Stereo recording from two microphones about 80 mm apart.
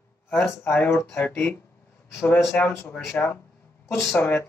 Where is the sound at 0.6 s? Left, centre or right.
Left.